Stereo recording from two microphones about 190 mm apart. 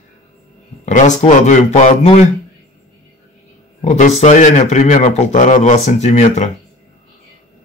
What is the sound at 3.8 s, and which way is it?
A man's voice, 40° left (ahead or behind).